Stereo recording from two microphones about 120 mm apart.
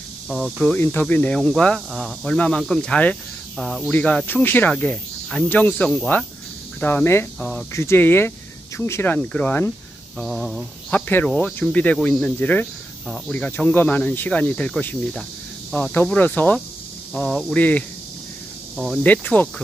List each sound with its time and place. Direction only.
0.3 s speech: centre (ahead or behind)
0.7 s speech: 15° left (ahead or behind)
7.3 s speech: 5° left (ahead or behind)
7.7 s speech: 20° left (ahead or behind)
10.1 s speech: centre (ahead or behind)
10.9 s speech: 15° left (ahead or behind)
11.2 s speech: 5° left (ahead or behind)
19.0 s speech: 15° left (ahead or behind)